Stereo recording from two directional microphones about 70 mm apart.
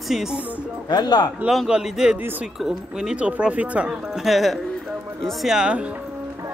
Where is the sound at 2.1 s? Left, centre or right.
Right.